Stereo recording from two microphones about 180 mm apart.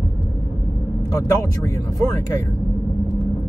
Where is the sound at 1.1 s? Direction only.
20° left (ahead or behind).